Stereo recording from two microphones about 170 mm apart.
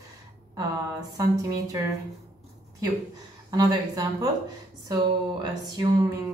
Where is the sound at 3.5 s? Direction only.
20° right (ahead or behind).